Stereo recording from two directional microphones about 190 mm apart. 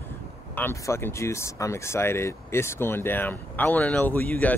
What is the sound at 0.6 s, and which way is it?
Speech, 10° left (ahead or behind).